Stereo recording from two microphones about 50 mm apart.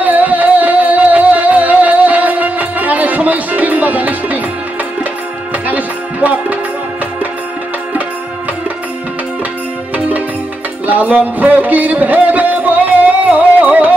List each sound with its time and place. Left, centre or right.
0.0 s music: right
5.7 s music: right
9.9 s music: right